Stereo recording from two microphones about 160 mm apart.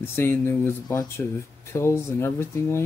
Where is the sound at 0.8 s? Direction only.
25° left (ahead or behind).